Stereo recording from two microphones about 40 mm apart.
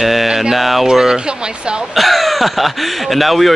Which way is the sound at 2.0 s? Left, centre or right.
Centre.